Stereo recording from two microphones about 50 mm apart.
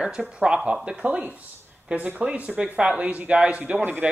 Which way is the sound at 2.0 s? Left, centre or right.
Right.